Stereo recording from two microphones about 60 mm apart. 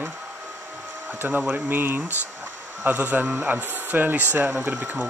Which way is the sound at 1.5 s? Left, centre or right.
Right.